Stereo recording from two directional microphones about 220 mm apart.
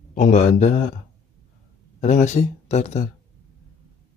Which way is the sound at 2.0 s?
30° left (ahead or behind).